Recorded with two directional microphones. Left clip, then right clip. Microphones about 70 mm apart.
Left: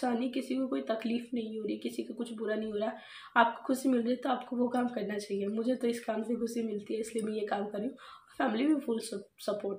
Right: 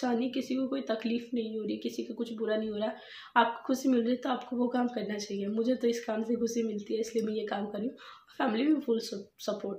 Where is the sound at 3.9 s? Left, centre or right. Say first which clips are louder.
Right 1 dB; right.